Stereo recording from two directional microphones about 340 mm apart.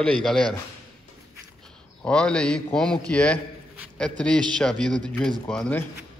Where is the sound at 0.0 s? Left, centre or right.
Centre.